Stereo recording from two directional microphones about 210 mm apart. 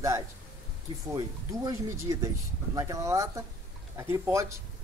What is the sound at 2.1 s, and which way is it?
Speech, 15° right (ahead or behind).